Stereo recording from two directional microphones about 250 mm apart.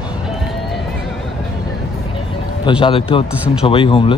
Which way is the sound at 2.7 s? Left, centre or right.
Left.